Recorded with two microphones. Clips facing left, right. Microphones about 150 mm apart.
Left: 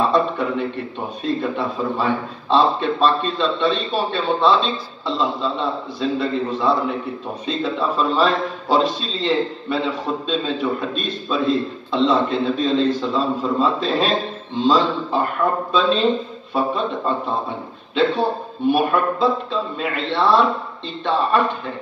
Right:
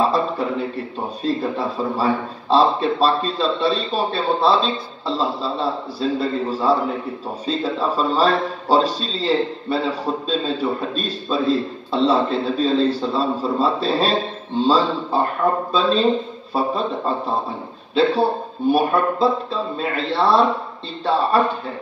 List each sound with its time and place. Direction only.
0.1 s a sound: 35° right (ahead or behind)
1.2 s a man's voice: 35° right (ahead or behind)
7.4 s a man's voice: 35° right (ahead or behind)